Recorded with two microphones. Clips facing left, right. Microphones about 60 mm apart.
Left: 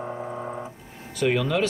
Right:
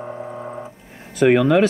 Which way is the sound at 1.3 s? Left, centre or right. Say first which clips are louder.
Right 9 dB; right.